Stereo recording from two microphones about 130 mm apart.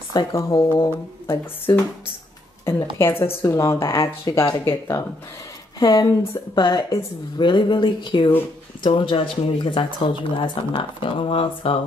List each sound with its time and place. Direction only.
0.1 s a woman's voice: 30° left (ahead or behind); by 11.8 s 45° left (ahead or behind)